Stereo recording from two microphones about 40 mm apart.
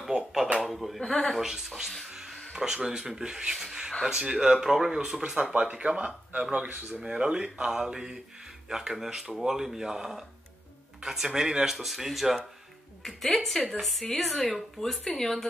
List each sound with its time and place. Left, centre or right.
0.6 s a sound: centre
1.0 s a woman's voice: centre
1.3 s speech: centre
2.0 s a sound: centre
2.5 s speech: centre
3.5 s a sound: centre
4.0 s speech: centre
4.9 s speech: right
6.9 s a woman's voice: centre